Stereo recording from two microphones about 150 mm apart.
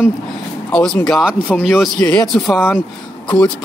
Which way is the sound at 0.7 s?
5° left (ahead or behind).